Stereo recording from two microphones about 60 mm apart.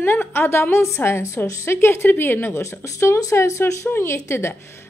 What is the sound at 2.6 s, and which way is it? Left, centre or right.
A woman's voice, left.